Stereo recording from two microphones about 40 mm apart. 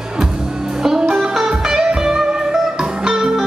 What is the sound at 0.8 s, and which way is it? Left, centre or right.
Music, centre.